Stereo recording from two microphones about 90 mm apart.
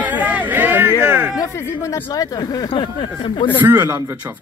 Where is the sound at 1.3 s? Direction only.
30° left (ahead or behind); by 2.6 s 50° left (ahead or behind).